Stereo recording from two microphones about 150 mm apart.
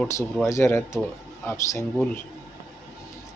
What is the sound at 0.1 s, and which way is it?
Speech, 20° left (ahead or behind).